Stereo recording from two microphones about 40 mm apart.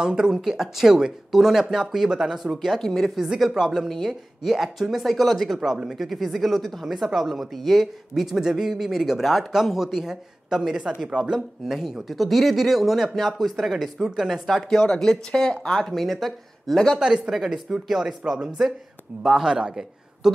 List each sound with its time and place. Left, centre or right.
0.0 s speech: centre
2.8 s speech: centre
3.3 s a woman's voice: centre
5.6 s speech: centre
6.0 s a woman's voice: centre
14.8 s speech: centre
15.9 s a woman's voice: centre
17.3 s speech: centre
19.2 s speech: centre